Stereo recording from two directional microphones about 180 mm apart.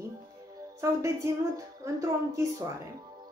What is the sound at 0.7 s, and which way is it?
Speech, 15° right (ahead or behind).